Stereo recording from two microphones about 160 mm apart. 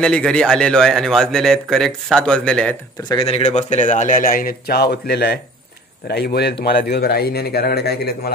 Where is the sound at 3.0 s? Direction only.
25° left (ahead or behind).